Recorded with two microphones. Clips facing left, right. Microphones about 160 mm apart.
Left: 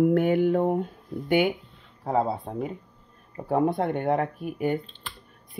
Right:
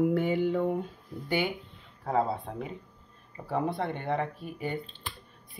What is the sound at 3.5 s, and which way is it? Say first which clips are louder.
A woman's voice: left 7 dB; 50° left (ahead or behind).